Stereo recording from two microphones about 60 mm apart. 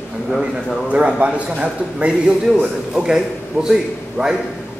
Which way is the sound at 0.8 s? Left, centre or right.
Right.